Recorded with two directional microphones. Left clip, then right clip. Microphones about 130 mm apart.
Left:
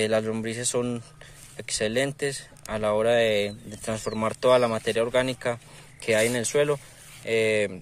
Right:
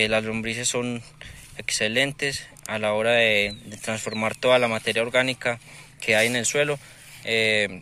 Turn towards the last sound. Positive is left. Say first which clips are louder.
# right 2 dB
turn(degrees=40)  # may be behind; listen again after turning